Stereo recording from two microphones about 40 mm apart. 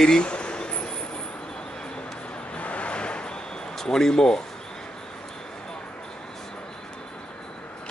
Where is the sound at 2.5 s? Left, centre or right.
Left.